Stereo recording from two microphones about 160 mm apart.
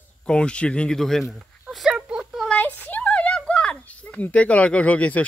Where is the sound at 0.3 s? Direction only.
5° left (ahead or behind).